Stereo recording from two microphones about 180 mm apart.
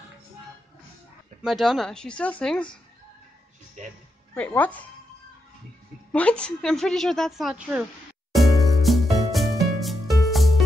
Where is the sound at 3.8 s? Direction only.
40° right (ahead or behind).